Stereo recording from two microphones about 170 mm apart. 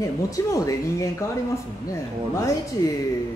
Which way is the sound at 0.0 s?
20° left (ahead or behind).